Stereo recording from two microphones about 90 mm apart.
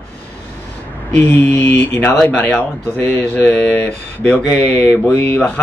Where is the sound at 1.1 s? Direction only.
20° left (ahead or behind).